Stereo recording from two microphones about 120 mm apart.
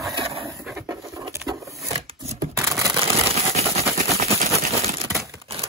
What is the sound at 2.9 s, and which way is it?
Vehicle, 55° right (ahead or behind).